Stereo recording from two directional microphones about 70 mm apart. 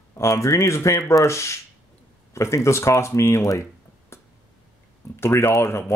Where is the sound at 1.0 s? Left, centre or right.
Left.